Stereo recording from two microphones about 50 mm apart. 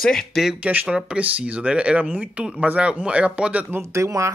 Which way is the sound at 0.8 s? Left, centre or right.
Centre.